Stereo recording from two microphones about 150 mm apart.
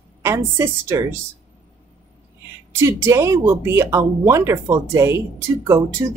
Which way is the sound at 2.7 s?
20° right (ahead or behind).